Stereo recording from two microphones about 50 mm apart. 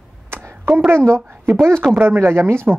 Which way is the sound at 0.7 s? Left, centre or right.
Right.